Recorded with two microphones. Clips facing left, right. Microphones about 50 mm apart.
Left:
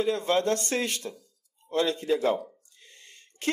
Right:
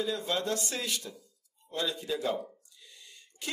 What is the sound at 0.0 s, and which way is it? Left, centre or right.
Speech, left.